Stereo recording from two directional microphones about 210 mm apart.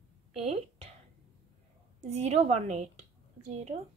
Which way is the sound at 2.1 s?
30° right (ahead or behind).